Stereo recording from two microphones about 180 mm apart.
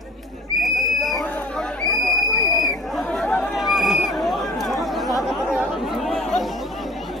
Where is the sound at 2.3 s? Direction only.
20° left (ahead or behind).